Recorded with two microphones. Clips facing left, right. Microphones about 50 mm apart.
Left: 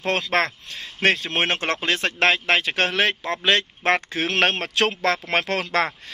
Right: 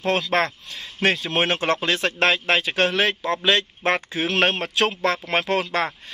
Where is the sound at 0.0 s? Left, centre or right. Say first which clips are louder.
Right 1 dB; left.